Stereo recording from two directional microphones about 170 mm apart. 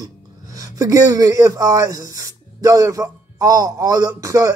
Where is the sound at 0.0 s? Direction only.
20° right (ahead or behind).